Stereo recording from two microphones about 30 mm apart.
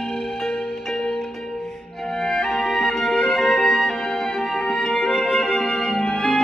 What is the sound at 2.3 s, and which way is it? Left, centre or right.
Music, centre.